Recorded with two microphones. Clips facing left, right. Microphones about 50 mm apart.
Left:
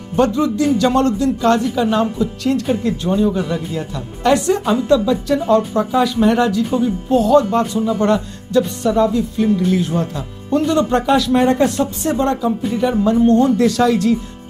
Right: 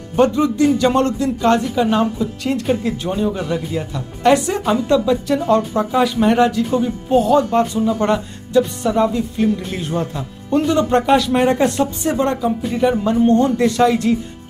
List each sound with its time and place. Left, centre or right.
0.1 s speech: centre
1.6 s a woman's voice: centre
6.6 s a woman's voice: centre
7.1 s speech: centre